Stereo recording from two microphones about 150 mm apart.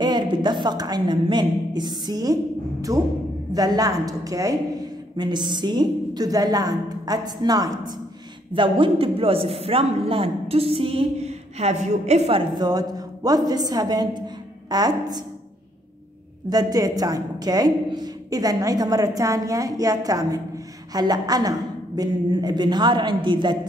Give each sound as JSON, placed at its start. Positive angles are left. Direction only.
{"t": 0.0, "sound": "a woman's voice", "side_deg": -30}
{"t": 16.4, "sound": "a woman's voice", "side_deg": -25}